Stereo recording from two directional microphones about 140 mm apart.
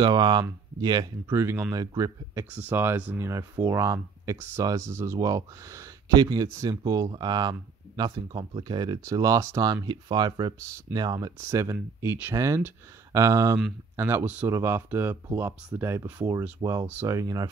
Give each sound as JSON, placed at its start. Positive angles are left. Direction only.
{"t": 0.0, "sound": "speech", "side_deg": -35}
{"t": 1.3, "sound": "speech", "side_deg": -15}
{"t": 2.5, "sound": "speech", "side_deg": -10}